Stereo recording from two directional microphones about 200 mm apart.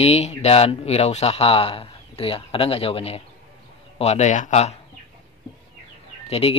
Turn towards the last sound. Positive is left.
turn(degrees=30)  # may be behind; listen again after turning